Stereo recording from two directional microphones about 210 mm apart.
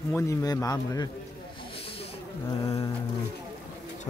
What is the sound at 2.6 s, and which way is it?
Speech, 15° left (ahead or behind).